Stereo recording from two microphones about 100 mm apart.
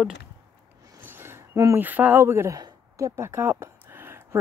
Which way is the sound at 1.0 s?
25° right (ahead or behind).